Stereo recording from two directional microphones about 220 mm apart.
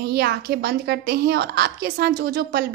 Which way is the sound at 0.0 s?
45° right (ahead or behind).